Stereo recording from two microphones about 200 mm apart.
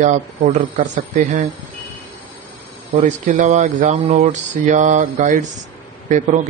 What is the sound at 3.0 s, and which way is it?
Speech, 40° right (ahead or behind).